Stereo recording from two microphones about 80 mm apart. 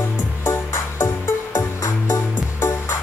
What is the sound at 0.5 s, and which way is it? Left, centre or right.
Music, left.